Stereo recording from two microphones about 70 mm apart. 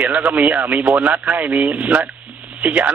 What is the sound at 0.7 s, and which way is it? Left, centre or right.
Speech, right.